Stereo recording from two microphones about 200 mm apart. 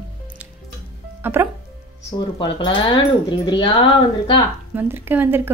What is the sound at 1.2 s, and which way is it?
Speech, 10° right (ahead or behind).